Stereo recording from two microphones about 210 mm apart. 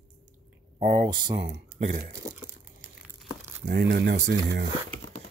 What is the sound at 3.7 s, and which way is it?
Speech, 50° right (ahead or behind).